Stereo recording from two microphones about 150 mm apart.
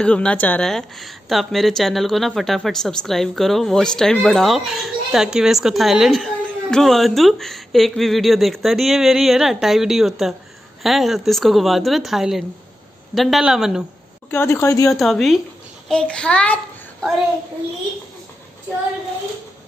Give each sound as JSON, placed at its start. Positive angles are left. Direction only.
{"t": 0.0, "sound": "a woman's voice", "side_deg": 5}
{"t": 14.3, "sound": "speech", "side_deg": 15}
{"t": 14.9, "sound": "a woman's voice", "side_deg": 0}